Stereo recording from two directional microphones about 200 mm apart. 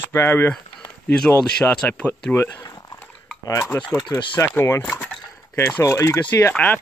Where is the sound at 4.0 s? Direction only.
25° left (ahead or behind).